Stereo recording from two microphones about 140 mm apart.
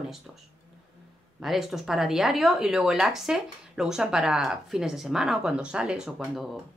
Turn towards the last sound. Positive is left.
turn(degrees=-5)  # may be behind; listen again after turning